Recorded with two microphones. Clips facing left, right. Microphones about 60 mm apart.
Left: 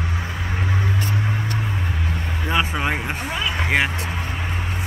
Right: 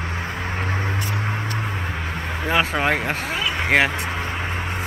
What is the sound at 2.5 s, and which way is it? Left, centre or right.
Vehicle, right.